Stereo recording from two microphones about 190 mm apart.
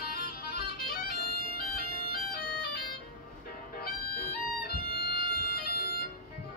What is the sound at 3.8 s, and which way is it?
Music, 50° left (ahead or behind).